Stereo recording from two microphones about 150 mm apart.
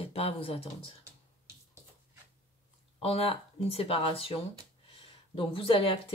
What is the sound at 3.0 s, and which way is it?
Speech, 40° left (ahead or behind).